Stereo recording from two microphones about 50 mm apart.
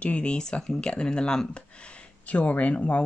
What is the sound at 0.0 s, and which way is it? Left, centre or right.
Speech, left.